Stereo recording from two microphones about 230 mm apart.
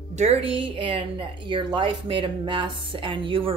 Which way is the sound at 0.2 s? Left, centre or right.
Right.